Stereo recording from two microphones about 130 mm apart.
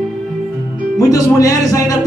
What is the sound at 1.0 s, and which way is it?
A man's voice, 25° left (ahead or behind).